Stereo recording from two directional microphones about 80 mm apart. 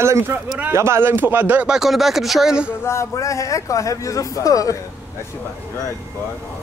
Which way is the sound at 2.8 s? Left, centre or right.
Left.